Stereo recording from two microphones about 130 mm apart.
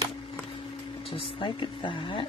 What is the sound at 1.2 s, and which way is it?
A woman's voice, 40° left (ahead or behind).